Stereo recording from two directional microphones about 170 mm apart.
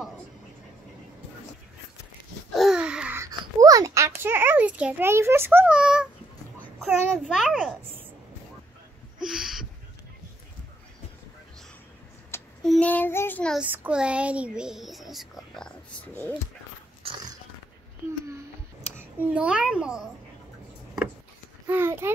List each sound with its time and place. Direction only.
2.5 s babbling: centre (ahead or behind)
3.3 s a child's voice: 20° right (ahead or behind); by 7.7 s centre (ahead or behind)
9.2 s a sound: 5° right (ahead or behind)
12.3 s child singing: 15° left (ahead or behind)
13.6 s speech: 5° right (ahead or behind); by 16.3 s 10° left (ahead or behind)
17.0 s dog: 30° right (ahead or behind)
18.9 s a child's voice: 5° right (ahead or behind)
21.6 s a child's voice: 15° right (ahead or behind)